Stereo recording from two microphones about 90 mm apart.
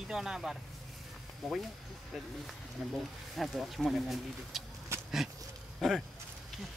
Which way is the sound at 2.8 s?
Centre (ahead or behind).